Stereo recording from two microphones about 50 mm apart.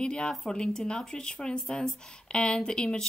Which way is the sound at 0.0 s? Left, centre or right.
Centre.